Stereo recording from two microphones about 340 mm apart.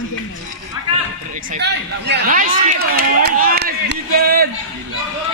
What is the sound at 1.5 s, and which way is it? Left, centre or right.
Speech, right.